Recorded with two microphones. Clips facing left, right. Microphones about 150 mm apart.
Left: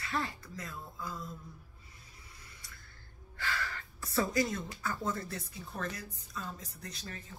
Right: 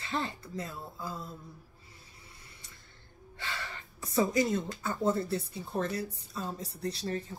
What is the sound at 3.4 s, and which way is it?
A woman's voice, 20° right (ahead or behind).